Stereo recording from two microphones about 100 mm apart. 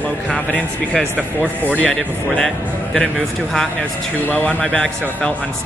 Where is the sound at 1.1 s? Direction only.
15° right (ahead or behind).